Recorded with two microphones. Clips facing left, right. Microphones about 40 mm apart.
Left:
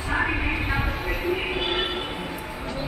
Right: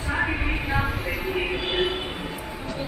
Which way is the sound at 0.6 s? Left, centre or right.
Left.